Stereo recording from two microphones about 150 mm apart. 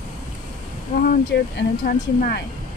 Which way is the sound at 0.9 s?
70° left (ahead or behind).